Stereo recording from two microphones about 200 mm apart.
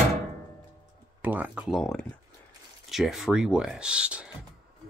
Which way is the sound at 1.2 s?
10° right (ahead or behind).